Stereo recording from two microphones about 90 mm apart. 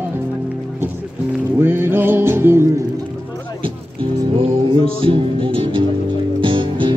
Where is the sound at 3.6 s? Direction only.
75° right (ahead or behind).